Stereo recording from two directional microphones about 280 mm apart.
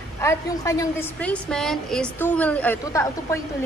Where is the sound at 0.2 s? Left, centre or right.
Centre.